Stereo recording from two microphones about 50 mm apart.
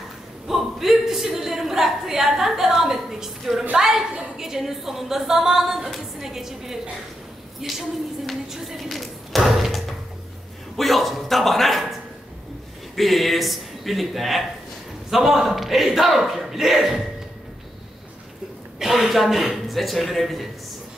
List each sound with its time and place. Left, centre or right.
0.5 s a sound: centre
3.7 s a woman's voice: centre
8.5 s thump: centre
10.8 s a man's voice: centre
12.9 s a man's voice: centre
18.8 s a man's voice: centre